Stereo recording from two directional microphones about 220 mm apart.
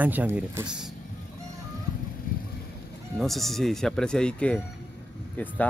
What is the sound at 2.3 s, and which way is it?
Vehicle, 40° left (ahead or behind).